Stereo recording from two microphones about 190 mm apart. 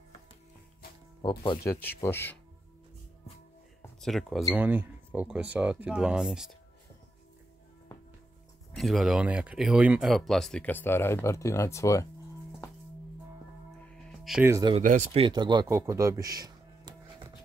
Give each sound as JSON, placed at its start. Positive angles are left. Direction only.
{"t": 1.2, "sound": "speech", "side_deg": 25}
{"t": 4.0, "sound": "speech", "side_deg": 0}
{"t": 8.7, "sound": "speech", "side_deg": 0}
{"t": 14.2, "sound": "speech", "side_deg": -5}
{"t": 14.5, "sound": "speech", "side_deg": -25}
{"t": 14.8, "sound": "speech", "side_deg": -45}
{"t": 15.1, "sound": "speech", "side_deg": -25}